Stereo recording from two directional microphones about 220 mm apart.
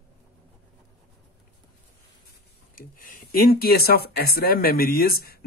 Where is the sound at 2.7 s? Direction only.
40° left (ahead or behind).